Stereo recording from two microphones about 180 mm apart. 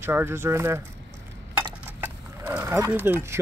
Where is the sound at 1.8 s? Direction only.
10° right (ahead or behind).